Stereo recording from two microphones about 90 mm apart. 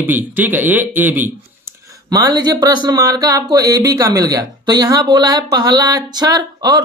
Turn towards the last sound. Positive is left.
turn(degrees=-50)  # may be behind; listen again after turning